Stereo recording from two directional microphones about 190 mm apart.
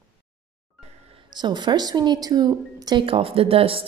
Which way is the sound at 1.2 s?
20° right (ahead or behind).